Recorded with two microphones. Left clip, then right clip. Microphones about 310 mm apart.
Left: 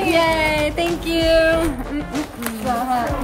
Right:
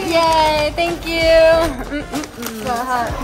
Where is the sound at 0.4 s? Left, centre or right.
Centre.